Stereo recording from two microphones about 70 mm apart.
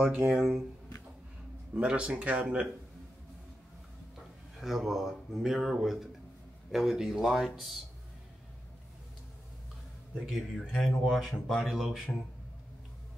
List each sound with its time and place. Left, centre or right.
0.3 s speech: centre
1.8 s speech: centre
4.6 s speech: centre
10.2 s speech: centre